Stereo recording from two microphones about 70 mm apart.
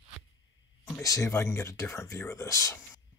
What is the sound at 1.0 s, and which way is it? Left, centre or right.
Speech, left.